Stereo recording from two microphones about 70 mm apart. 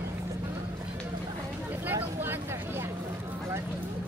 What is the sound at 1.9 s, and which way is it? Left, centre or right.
Vehicle, right.